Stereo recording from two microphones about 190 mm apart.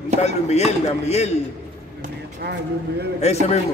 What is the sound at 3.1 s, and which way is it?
Speech, 35° left (ahead or behind).